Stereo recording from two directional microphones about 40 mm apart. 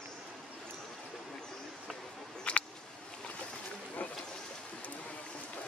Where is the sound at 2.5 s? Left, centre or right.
Left.